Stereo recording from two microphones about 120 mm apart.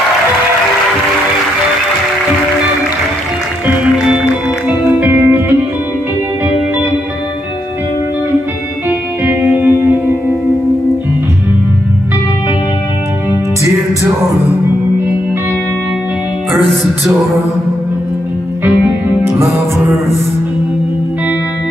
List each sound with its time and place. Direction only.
3.6 s music: 10° right (ahead or behind)
9.2 s music: 15° right (ahead or behind)
19.2 s music: 20° right (ahead or behind)